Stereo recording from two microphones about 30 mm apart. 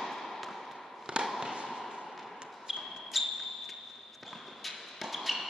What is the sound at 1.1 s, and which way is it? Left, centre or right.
Fireworks, right.